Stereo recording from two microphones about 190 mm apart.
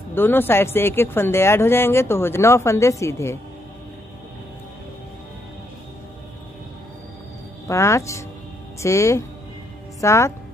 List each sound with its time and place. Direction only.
0.1 s speech: 10° left (ahead or behind)
7.6 s a woman's voice: 15° left (ahead or behind)